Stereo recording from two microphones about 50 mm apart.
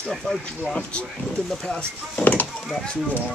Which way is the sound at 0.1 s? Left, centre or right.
Centre.